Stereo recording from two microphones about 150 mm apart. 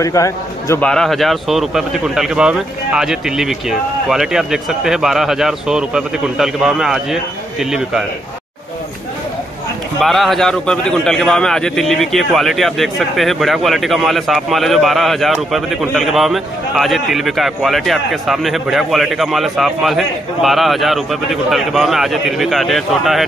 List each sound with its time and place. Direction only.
0.0 s a man's voice: 20° left (ahead or behind)
0.7 s a man's voice: 5° left (ahead or behind)
9.9 s a man's voice: centre (ahead or behind)